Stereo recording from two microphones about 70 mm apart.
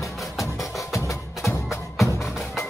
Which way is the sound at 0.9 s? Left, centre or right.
Left.